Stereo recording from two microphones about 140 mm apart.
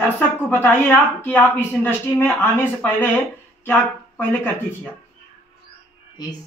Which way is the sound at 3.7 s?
15° left (ahead or behind).